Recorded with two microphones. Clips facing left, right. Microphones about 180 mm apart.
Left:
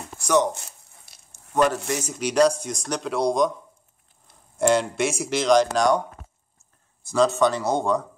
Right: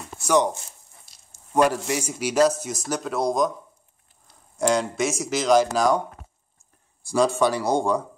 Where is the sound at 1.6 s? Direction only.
10° right (ahead or behind).